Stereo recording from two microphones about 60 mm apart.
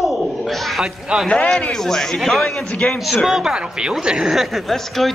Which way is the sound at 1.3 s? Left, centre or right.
Centre.